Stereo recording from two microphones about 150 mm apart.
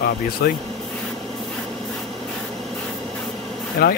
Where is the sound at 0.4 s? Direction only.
90° left.